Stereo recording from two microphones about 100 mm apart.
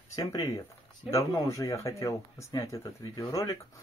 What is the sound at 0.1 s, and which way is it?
Speech, 40° left (ahead or behind).